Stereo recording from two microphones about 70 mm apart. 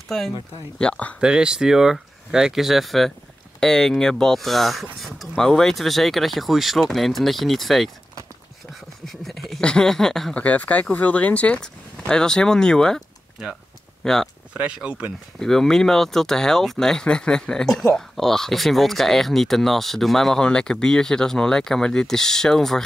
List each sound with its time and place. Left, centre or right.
0.7 s speech: centre
1.2 s speech: centre
9.0 s speech: centre
9.6 s speech: centre
10.3 s speech: left
14.0 s speech: centre
14.5 s speech: centre
15.4 s speech: centre